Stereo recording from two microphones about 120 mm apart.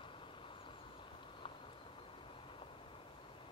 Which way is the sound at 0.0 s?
45° left (ahead or behind).